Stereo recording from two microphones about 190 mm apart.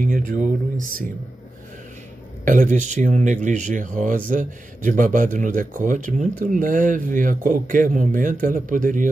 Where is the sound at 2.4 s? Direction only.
45° right (ahead or behind).